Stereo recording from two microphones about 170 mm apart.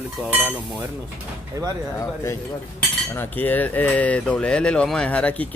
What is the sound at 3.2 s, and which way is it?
Speech, 10° left (ahead or behind).